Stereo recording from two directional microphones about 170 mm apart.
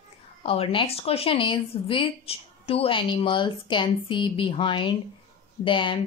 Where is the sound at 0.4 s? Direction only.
35° left (ahead or behind).